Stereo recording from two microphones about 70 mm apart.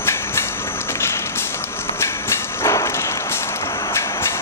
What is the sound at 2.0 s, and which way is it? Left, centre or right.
Train, left.